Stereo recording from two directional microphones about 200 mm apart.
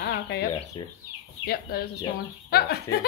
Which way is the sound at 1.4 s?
50° left (ahead or behind).